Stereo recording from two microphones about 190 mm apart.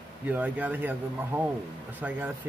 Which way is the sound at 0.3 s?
10° right (ahead or behind).